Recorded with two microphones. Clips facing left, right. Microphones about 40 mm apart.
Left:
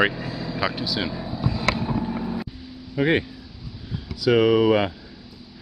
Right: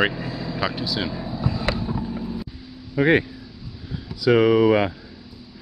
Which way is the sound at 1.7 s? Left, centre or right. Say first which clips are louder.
Left 2 dB; left.